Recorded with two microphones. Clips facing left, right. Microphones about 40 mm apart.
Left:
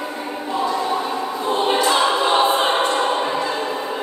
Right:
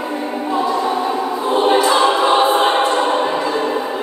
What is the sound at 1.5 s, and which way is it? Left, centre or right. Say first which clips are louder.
Choir: right 4 dB; centre.